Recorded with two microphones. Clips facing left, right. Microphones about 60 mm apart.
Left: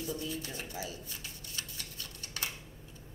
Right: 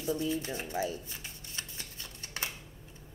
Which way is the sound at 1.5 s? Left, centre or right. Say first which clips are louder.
Even; right.